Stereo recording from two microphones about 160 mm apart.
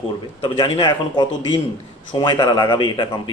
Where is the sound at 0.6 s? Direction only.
30° left (ahead or behind).